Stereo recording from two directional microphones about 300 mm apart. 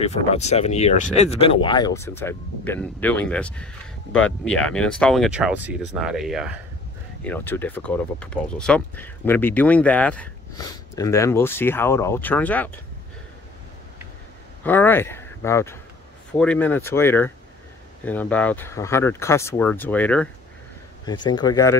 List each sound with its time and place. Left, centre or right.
0.0 s speech: left; by 12.7 s centre
14.6 s a man's voice: centre